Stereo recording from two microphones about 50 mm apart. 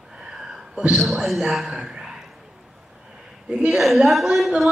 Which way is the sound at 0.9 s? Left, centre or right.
Centre.